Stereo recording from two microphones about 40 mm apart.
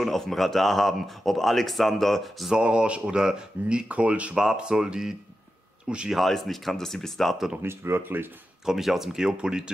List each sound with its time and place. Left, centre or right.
0.0 s speech: centre
2.5 s speech: right
3.9 s speech: right
4.6 s speech: centre
6.1 s speech: centre
7.6 s speech: right
8.6 s speech: centre
9.4 s speech: right